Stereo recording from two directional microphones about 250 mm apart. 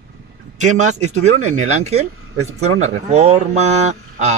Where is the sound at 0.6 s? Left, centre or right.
Right.